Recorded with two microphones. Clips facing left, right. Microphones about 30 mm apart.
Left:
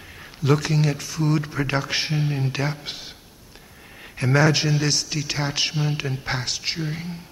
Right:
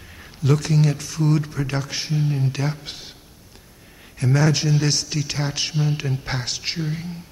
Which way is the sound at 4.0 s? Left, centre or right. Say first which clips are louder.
Left 2 dB; left.